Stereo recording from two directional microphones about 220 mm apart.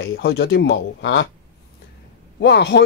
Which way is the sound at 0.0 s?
50° left (ahead or behind).